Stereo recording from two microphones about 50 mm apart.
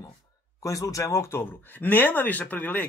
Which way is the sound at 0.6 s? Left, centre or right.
Left.